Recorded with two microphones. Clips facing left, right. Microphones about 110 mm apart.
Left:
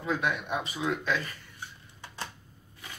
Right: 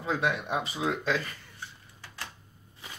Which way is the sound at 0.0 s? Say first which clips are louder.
Right 1 dB; 30° right (ahead or behind).